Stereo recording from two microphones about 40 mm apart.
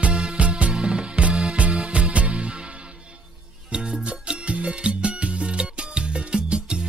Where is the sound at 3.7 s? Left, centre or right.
Right.